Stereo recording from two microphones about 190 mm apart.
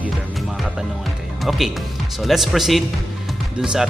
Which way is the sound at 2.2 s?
Centre (ahead or behind).